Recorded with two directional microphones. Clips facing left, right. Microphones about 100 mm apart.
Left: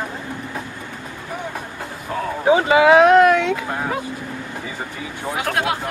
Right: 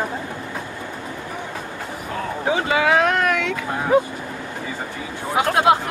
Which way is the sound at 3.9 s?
20° right (ahead or behind).